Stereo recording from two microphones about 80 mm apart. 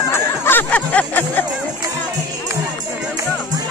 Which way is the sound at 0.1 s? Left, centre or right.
Left.